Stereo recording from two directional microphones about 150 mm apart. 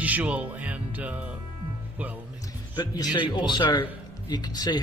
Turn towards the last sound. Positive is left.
turn(degrees=25)  # may be behind; listen again after turning